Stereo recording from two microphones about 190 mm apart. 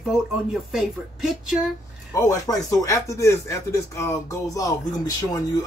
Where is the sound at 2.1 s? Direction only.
15° left (ahead or behind).